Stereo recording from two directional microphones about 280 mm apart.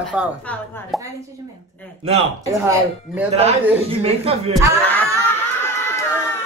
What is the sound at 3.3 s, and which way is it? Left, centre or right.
A woman's voice, right.